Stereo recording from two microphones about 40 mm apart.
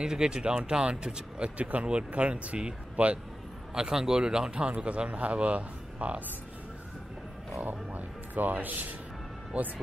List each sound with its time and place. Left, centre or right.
0.0 s speech: centre
3.7 s speech: centre; by 6.2 s right
7.6 s a sound: right
9.5 s speech: right